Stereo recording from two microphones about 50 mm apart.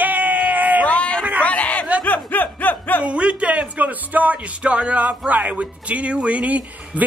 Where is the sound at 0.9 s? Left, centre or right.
Left.